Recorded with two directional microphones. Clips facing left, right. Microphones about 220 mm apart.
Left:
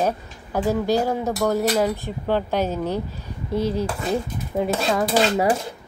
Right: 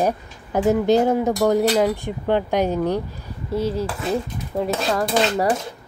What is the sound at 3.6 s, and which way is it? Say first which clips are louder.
Dishes: even; centre (ahead or behind).